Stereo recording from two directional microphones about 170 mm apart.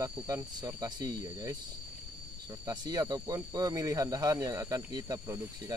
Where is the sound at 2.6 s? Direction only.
25° right (ahead or behind).